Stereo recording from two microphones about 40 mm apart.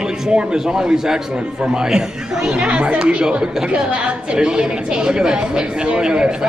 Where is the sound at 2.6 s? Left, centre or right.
Right.